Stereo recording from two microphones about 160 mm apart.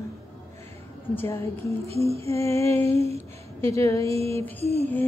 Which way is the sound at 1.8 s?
40° right (ahead or behind).